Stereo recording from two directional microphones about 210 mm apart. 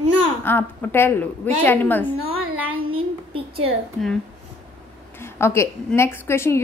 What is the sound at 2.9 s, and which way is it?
Speech, 25° right (ahead or behind).